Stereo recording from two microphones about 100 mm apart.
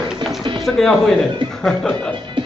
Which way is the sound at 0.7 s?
5° left (ahead or behind).